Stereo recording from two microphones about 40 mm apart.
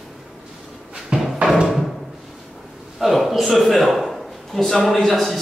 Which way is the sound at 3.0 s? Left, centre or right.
Centre.